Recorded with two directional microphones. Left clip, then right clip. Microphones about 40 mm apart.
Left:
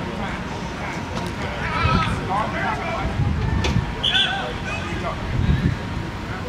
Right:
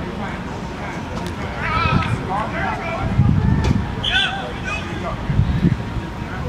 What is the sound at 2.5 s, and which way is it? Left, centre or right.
Vehicle, centre.